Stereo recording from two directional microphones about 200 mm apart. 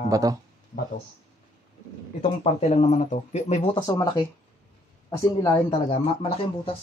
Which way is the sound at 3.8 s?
20° left (ahead or behind).